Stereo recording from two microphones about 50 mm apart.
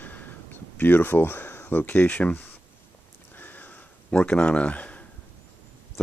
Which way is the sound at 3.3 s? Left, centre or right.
Left.